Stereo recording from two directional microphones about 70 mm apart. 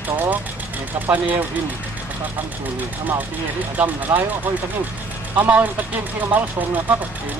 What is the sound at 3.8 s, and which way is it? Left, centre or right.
Speech, right.